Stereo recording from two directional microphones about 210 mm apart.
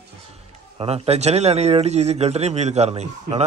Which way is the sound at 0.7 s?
30° right (ahead or behind).